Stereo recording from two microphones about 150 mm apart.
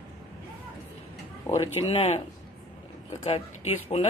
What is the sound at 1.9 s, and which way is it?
Speech, 45° left (ahead or behind).